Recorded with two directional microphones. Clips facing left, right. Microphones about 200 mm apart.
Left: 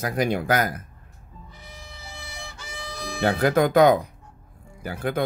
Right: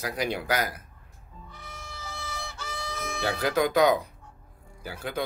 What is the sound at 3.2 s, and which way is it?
Speech, 55° left (ahead or behind).